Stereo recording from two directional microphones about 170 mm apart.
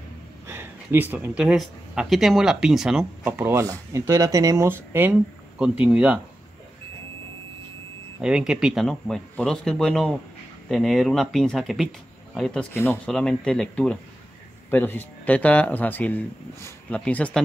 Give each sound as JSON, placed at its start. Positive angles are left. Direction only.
{"t": 0.5, "sound": "speech", "side_deg": -10}
{"t": 8.2, "sound": "speech", "side_deg": -5}
{"t": 12.7, "sound": "speech", "side_deg": 15}